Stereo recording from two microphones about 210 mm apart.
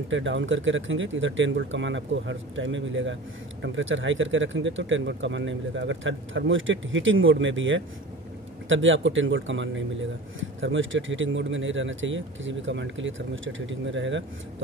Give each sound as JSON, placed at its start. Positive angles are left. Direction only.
{"t": 0.1, "sound": "speech", "side_deg": -65}